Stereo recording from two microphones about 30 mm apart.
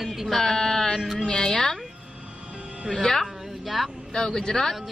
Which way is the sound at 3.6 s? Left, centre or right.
Centre.